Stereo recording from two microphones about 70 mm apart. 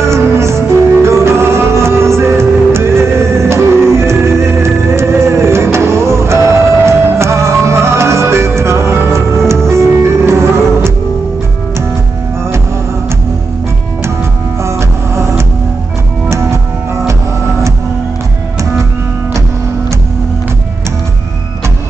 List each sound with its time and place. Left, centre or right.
0.0 s music: right
14.6 s music: right